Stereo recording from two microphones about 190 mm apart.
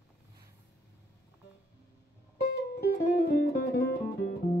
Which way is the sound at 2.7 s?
55° left (ahead or behind).